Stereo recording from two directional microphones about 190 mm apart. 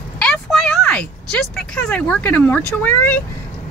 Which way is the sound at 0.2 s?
5° left (ahead or behind).